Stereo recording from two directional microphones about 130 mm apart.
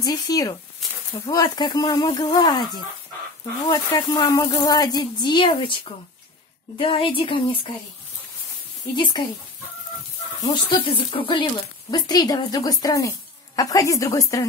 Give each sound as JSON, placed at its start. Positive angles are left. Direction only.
{"t": 0.0, "sound": "speech", "side_deg": 30}
{"t": 8.9, "sound": "speech", "side_deg": 40}
{"t": 10.4, "sound": "speech", "side_deg": 35}
{"t": 11.9, "sound": "speech", "side_deg": 30}